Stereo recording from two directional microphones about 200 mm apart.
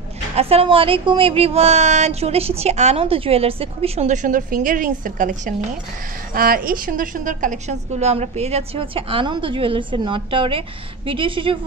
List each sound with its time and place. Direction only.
0.4 s a woman's voice: 30° right (ahead or behind)